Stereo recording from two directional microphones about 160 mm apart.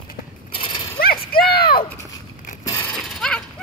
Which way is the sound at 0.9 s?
65° left (ahead or behind).